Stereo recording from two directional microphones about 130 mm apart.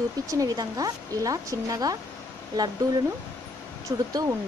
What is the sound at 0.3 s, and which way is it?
Speech, 25° right (ahead or behind).